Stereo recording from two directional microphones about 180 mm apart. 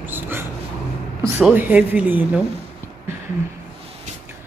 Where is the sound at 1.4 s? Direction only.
10° right (ahead or behind).